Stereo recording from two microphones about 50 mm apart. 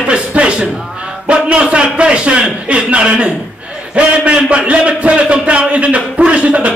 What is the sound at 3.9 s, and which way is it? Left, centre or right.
A man's voice, right.